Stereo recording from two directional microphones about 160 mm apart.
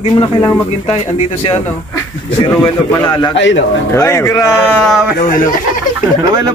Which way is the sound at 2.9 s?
20° left (ahead or behind).